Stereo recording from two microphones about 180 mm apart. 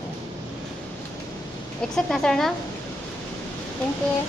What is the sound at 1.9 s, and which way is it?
Speech, centre (ahead or behind).